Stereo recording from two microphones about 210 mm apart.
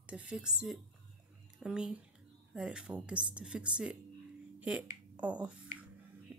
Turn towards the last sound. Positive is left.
turn(degrees=-5)  # may be behind; listen again after turning